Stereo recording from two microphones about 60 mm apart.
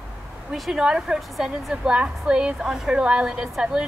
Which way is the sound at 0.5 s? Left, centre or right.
Centre.